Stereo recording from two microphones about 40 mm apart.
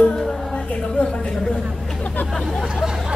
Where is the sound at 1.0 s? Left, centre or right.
Left.